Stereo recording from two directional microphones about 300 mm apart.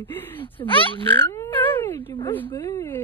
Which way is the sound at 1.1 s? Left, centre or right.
Centre.